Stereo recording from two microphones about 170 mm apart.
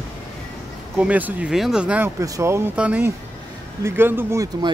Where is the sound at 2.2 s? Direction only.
20° right (ahead or behind).